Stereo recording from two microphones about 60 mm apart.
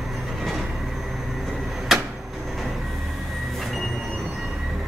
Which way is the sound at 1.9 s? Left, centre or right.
Centre.